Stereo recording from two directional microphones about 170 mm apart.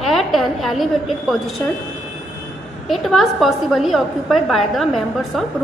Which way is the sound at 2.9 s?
Centre (ahead or behind).